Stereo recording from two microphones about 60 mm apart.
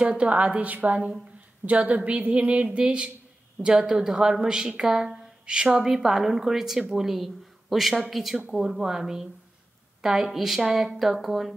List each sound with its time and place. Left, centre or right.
0.0 s a woman's voice: right; by 11.5 s centre